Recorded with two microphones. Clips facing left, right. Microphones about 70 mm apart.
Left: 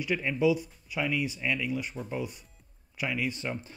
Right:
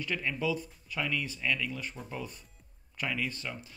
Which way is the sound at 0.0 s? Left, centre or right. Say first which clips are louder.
Left 6 dB; centre.